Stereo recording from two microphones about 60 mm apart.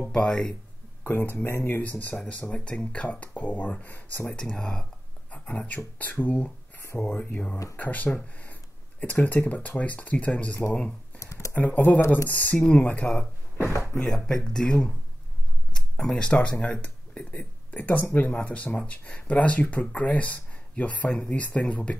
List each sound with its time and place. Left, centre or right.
0.1 s speech: centre
1.0 s speech: left
1.8 s speech: left
4.3 s speech: centre
5.3 s a sound: left
5.9 s speech: left
11.1 s computer keyboard: left
11.5 s speech: left
14.0 s speech: centre; by 21.9 s left